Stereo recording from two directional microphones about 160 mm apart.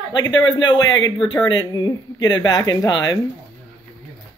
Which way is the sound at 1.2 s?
30° left (ahead or behind).